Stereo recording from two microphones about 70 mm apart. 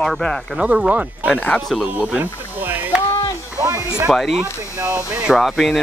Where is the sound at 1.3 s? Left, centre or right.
Centre.